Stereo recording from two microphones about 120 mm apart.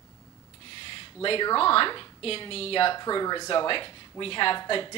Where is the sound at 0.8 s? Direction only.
45° left (ahead or behind).